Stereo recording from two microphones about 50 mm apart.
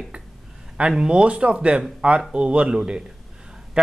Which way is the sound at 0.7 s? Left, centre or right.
Centre.